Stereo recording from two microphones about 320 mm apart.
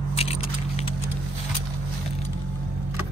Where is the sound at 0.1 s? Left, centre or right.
Centre.